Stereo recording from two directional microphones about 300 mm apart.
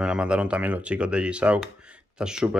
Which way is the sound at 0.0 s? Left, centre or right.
Centre.